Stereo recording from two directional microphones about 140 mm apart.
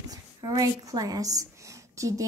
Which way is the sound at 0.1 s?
25° right (ahead or behind).